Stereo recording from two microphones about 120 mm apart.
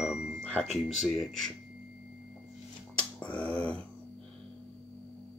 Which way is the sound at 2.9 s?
10° left (ahead or behind).